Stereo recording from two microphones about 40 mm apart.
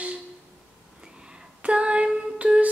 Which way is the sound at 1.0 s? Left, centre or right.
Right.